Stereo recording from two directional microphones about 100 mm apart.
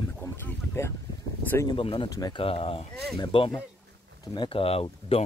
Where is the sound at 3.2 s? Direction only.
65° left (ahead or behind).